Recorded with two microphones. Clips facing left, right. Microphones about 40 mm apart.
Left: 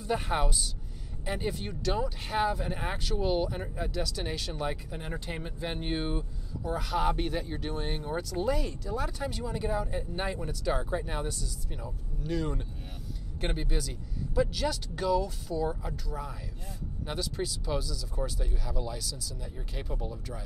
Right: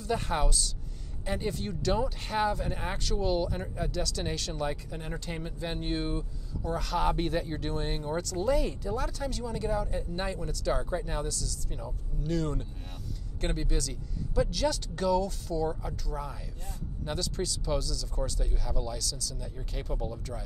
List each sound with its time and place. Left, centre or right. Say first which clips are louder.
0.0 s speech: even; centre
8.9 s speech: even; centre
11.2 s speech: even; left
11.7 s speech: right 1 dB; centre